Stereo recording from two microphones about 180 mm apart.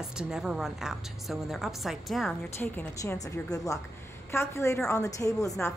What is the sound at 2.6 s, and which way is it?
A woman's voice, 10° left (ahead or behind).